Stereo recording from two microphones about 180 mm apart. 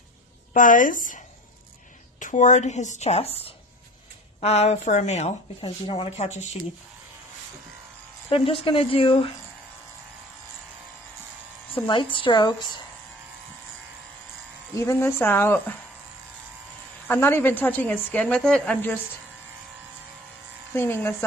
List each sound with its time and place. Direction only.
0.5 s a woman's voice: 45° left (ahead or behind)
8.3 s speech: 30° left (ahead or behind)
11.7 s speech: 30° left (ahead or behind)
14.8 s a woman's voice: 15° left (ahead or behind)
17.1 s a woman's voice: 10° left (ahead or behind)
20.7 s a woman's voice: 15° left (ahead or behind)